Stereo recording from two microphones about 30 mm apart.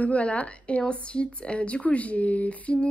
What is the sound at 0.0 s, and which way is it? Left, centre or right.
Speech, left.